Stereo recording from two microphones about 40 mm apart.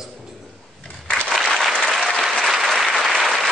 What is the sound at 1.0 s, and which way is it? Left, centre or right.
Applause, left.